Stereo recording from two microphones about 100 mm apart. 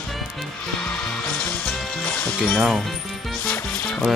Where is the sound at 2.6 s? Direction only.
Centre (ahead or behind).